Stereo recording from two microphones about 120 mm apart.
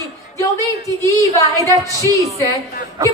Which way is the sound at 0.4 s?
25° left (ahead or behind).